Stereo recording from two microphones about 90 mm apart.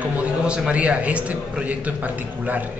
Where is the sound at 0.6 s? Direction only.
15° right (ahead or behind).